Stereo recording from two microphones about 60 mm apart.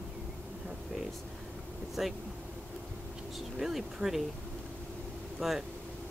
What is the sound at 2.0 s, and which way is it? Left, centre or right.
Speech, centre.